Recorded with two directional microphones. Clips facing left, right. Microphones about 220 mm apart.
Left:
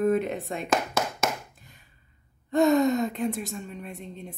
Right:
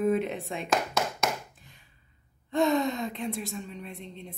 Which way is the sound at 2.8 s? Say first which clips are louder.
Left 6 dB; 45° left (ahead or behind).